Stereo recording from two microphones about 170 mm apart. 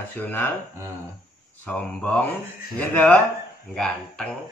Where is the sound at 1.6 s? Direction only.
5° left (ahead or behind).